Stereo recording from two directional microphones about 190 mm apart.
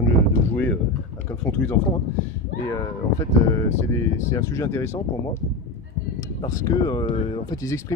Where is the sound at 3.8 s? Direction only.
15° left (ahead or behind).